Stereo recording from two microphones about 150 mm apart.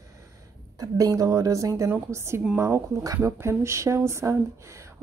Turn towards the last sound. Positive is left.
turn(degrees=-20)  # may be behind; listen again after turning